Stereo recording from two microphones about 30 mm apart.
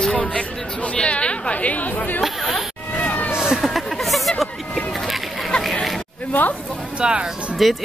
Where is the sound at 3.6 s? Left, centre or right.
Centre.